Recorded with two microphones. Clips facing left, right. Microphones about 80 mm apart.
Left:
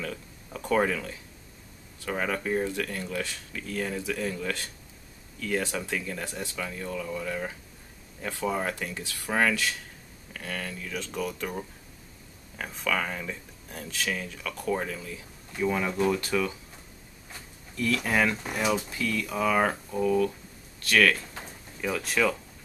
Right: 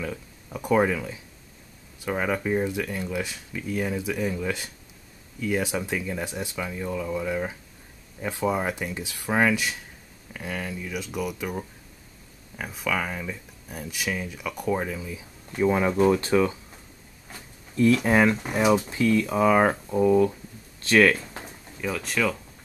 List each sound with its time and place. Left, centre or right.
0.0 s speech: centre
15.5 s speech: right
17.7 s speech: right
21.4 s drawer open or close: centre